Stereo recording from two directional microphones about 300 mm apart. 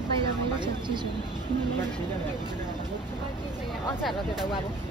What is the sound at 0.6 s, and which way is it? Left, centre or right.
Speech, centre.